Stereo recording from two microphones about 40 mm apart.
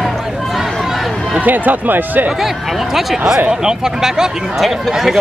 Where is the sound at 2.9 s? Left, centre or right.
Centre.